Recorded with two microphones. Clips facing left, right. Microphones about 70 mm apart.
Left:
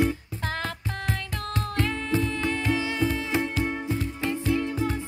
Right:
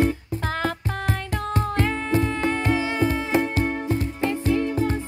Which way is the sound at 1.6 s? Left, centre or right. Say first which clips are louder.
Right 3 dB; right.